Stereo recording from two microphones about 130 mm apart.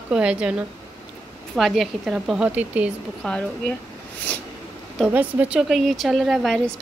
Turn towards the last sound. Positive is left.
turn(degrees=0)  # may be behind; listen again after turning